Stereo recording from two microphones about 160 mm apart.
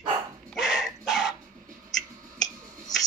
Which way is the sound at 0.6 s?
Centre (ahead or behind).